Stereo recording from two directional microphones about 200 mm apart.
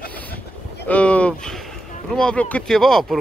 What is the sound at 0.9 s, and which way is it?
Speech, 5° left (ahead or behind).